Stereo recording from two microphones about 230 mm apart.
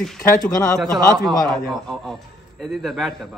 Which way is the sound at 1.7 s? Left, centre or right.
Centre.